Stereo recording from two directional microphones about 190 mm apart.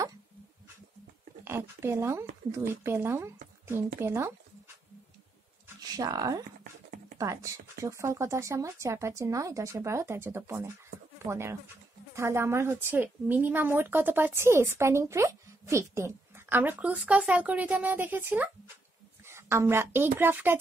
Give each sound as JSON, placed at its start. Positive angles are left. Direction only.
{"t": 1.4, "sound": "a woman's voice", "side_deg": -10}
{"t": 5.8, "sound": "a woman's voice", "side_deg": -20}